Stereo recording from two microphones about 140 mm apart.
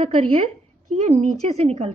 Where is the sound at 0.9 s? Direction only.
55° right (ahead or behind).